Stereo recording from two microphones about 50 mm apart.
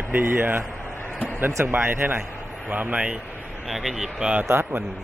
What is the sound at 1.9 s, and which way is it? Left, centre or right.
Speech, right.